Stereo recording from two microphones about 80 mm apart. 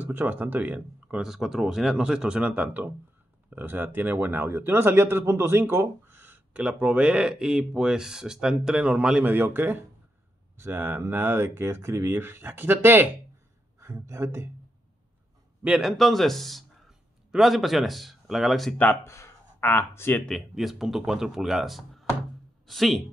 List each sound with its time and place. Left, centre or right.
0.0 s speech: right
1.3 s speech: centre
9.2 s speech: right
13.7 s speech: right
15.6 s speech: centre
19.0 s speech: left
20.2 s speech: centre